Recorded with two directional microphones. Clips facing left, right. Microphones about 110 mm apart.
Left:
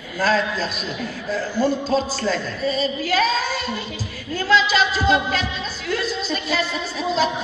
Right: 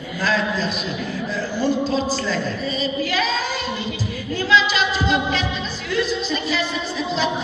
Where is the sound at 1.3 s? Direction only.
40° left (ahead or behind).